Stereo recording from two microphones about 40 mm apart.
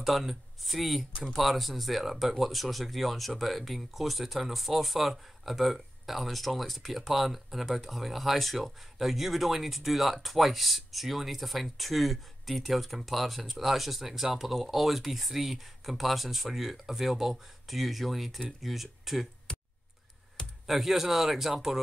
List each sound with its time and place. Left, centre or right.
0.0 s speech: centre
19.5 s a sound: left
20.6 s speech: centre